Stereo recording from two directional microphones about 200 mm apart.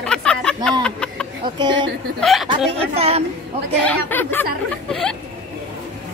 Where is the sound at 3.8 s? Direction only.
10° left (ahead or behind).